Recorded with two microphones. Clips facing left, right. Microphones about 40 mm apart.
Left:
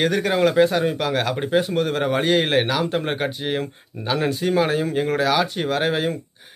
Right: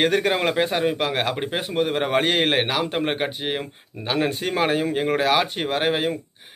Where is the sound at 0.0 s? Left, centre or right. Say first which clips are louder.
Left 1 dB; right.